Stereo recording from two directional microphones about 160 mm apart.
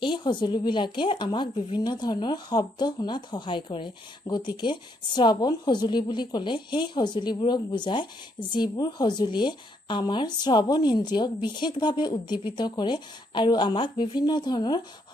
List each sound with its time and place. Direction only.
0.0 s speech: 30° left (ahead or behind)